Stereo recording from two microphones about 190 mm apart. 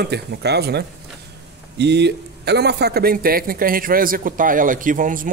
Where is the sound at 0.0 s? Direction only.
60° right (ahead or behind).